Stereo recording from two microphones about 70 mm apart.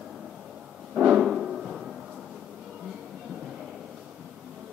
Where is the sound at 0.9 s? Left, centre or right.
Centre.